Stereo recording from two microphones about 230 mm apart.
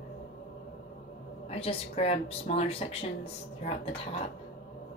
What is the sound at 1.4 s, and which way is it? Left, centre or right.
Speech, left.